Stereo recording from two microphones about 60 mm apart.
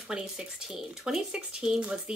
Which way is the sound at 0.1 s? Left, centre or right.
Centre.